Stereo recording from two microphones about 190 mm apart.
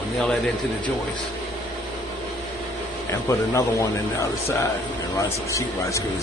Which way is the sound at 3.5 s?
15° left (ahead or behind).